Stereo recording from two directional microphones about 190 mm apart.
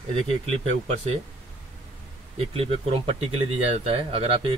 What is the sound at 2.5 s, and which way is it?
Speech, 30° right (ahead or behind).